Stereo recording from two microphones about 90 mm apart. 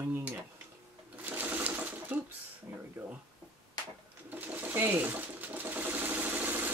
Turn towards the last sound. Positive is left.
turn(degrees=-20)  # may be behind; listen again after turning